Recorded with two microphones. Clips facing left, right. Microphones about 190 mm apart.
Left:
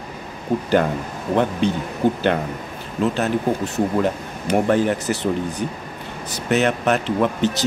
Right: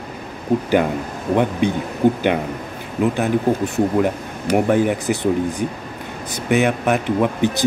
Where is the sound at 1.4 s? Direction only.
10° right (ahead or behind).